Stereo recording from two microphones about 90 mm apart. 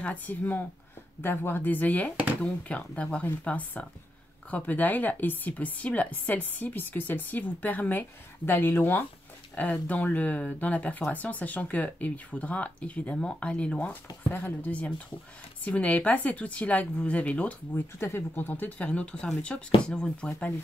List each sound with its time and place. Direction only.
0.0 s speech: 20° left (ahead or behind)
17.9 s speech: 25° left (ahead or behind); by 20.5 s 10° left (ahead or behind)